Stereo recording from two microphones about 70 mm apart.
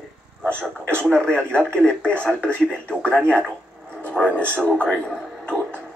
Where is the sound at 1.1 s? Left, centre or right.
Centre.